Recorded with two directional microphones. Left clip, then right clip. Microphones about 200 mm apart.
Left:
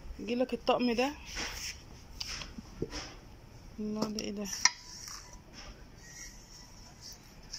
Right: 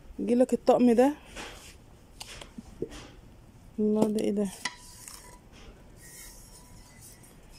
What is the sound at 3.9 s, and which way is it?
Speech, 35° right (ahead or behind).